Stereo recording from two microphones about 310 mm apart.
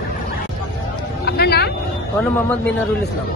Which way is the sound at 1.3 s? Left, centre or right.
Left.